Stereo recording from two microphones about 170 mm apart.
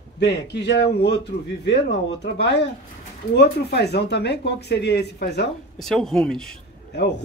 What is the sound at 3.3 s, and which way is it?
Speech, 80° left.